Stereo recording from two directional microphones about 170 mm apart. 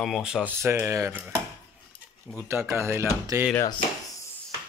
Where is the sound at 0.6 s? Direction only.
15° right (ahead or behind).